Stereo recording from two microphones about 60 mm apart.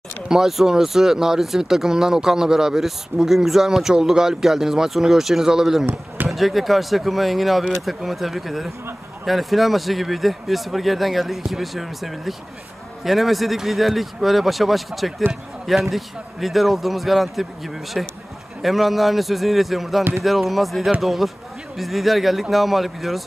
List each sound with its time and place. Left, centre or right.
0.3 s speech: centre
20.0 s speech: right
20.2 s speech: centre